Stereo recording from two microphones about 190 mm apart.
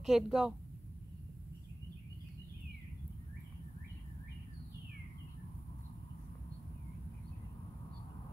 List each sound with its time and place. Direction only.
0.0 s a woman's voice: centre (ahead or behind)